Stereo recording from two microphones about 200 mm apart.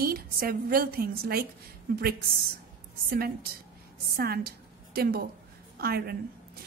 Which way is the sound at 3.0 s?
50° right (ahead or behind).